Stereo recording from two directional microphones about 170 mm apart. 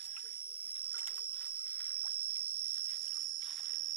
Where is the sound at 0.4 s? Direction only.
10° left (ahead or behind).